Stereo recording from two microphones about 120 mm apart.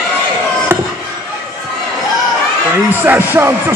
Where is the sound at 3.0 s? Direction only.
15° right (ahead or behind).